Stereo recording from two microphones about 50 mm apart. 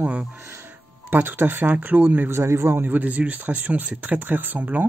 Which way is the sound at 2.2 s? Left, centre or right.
Right.